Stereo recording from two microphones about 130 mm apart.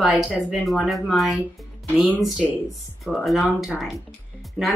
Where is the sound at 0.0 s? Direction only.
Centre (ahead or behind).